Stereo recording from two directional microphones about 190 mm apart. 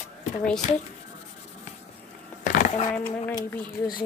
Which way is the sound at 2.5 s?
35° left (ahead or behind).